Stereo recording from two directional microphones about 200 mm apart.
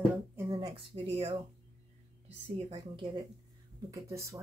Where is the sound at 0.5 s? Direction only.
20° right (ahead or behind).